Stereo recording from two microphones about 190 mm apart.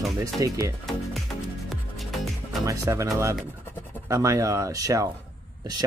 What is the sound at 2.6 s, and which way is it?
Speech, 15° right (ahead or behind).